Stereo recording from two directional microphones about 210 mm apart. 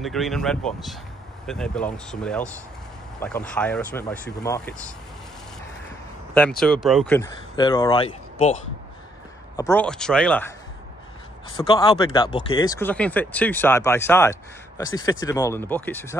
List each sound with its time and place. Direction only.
0.0 s speech: centre (ahead or behind)
6.3 s speech: 5° left (ahead or behind)
7.2 s speech: 20° left (ahead or behind)
9.6 s speech: 10° left (ahead or behind)
11.5 s speech: 25° left (ahead or behind)